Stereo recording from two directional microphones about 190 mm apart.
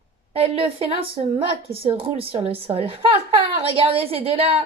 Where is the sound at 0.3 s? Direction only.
30° right (ahead or behind).